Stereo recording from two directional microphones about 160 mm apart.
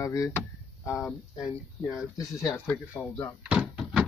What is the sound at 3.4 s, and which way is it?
Door, 5° right (ahead or behind).